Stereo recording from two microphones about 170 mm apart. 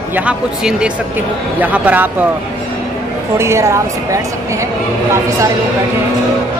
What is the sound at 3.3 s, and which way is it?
Speech, 15° right (ahead or behind).